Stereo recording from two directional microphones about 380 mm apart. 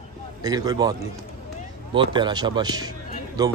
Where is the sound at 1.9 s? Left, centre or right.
Centre.